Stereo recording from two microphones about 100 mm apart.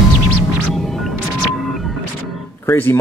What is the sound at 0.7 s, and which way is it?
Music, centre (ahead or behind).